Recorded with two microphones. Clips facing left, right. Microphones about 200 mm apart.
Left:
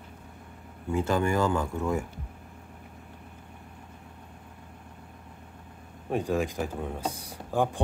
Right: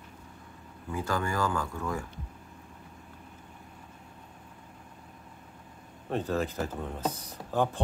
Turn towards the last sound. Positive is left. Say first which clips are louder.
# left 1 dB
turn(degrees=10)  # may be behind; listen again after turning